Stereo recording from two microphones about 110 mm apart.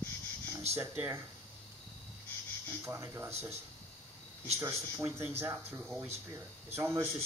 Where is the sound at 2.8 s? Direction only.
25° right (ahead or behind).